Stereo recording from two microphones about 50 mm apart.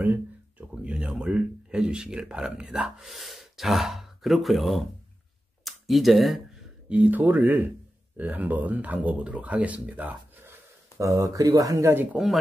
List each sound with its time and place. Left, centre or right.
0.0 s a sound: right
0.8 s speech: right
3.1 s speech: centre
6.9 s speech: right
11.0 s speech: right
12.1 s speech: right